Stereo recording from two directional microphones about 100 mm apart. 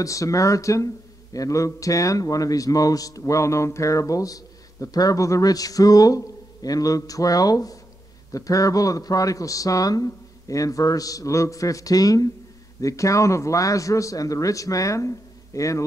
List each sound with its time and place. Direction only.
0.0 s speech: 35° left (ahead or behind)